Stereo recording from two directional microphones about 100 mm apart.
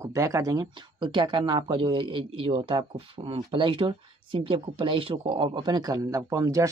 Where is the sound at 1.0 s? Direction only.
50° right (ahead or behind).